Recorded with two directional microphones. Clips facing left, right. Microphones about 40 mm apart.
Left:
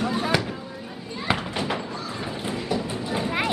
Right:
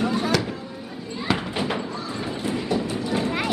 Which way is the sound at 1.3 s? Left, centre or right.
Centre.